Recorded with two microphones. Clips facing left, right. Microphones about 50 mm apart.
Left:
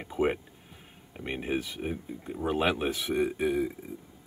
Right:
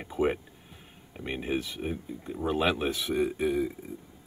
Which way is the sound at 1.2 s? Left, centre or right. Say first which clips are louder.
Even; left.